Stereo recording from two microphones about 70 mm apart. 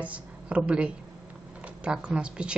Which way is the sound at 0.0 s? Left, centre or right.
Centre.